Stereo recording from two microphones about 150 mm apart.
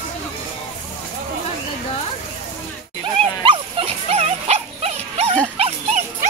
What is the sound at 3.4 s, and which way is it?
Dog, 35° right (ahead or behind).